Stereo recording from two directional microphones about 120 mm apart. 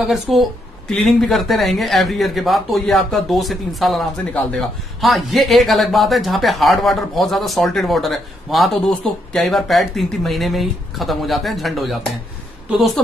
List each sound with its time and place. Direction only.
0.0 s a woman's voice: centre (ahead or behind)